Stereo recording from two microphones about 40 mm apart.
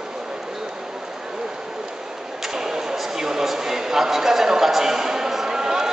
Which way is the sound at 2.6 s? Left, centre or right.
Centre.